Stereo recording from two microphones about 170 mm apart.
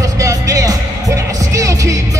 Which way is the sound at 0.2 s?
20° right (ahead or behind).